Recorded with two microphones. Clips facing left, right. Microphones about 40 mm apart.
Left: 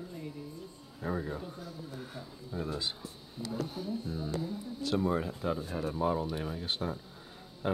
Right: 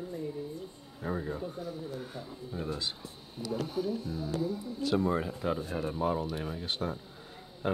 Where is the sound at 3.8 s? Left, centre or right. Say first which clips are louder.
Right 3 dB; right.